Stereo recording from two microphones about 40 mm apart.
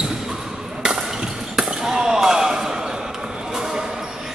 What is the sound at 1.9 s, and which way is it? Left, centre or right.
Basketball bounce, centre.